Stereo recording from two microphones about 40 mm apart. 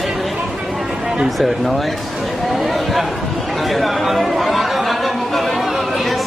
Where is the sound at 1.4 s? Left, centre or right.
Centre.